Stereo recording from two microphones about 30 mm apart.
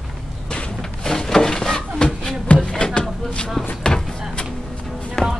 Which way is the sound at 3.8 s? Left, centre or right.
Left.